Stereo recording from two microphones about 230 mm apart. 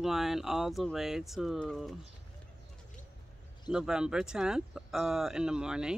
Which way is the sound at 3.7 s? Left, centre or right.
Centre.